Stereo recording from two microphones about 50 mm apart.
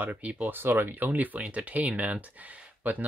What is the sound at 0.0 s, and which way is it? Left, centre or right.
Speech, right.